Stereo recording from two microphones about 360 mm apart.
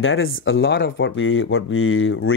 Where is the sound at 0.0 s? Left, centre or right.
Left.